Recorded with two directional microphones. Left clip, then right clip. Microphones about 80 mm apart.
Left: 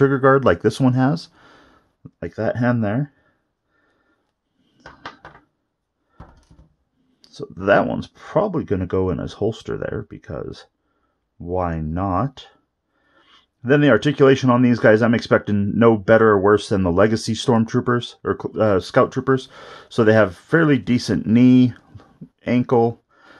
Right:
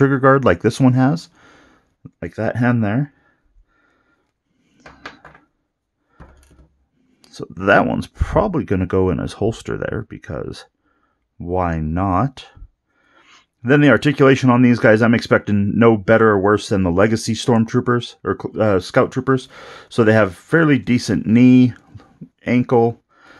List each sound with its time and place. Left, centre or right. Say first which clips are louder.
0.0 s speech: right 1 dB; right
4.7 s dishes: even; right
7.2 s speech: right 2 dB; right
13.0 s a sound: right 4 dB; right
13.3 s speech: right 2 dB; right